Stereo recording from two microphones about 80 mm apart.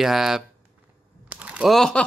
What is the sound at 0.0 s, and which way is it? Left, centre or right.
Speech, centre.